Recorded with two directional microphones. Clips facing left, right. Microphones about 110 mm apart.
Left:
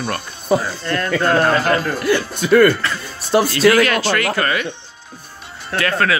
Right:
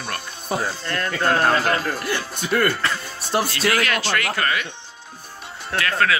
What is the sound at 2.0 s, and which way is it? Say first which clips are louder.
Speech: left 8 dB; 90° left.